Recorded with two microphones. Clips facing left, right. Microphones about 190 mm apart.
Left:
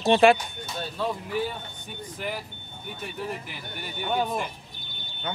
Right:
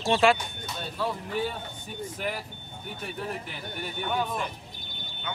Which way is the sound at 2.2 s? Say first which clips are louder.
Left 1 dB; centre (ahead or behind).